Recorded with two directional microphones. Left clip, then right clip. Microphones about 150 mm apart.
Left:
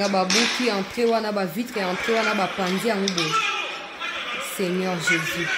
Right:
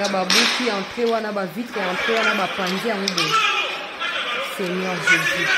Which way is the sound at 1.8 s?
30° right (ahead or behind).